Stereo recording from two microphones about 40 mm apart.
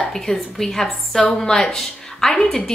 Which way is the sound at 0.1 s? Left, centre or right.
Centre.